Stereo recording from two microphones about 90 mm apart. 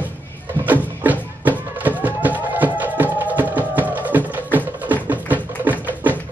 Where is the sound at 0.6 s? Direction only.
20° right (ahead or behind).